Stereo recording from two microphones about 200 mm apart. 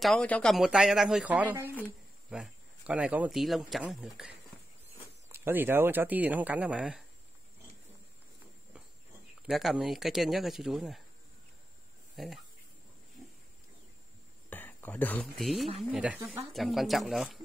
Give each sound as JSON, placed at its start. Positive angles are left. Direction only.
{"t": 0.0, "sound": "speech", "side_deg": 5}
{"t": 9.5, "sound": "speech", "side_deg": 0}
{"t": 12.2, "sound": "speech", "side_deg": 0}
{"t": 14.5, "sound": "speech", "side_deg": 10}